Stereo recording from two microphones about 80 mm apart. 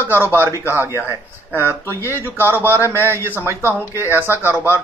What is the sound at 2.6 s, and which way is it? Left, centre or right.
Speech, left.